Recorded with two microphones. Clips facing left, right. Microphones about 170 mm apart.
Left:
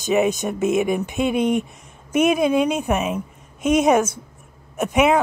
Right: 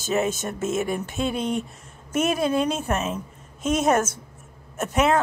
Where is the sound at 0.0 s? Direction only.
15° left (ahead or behind).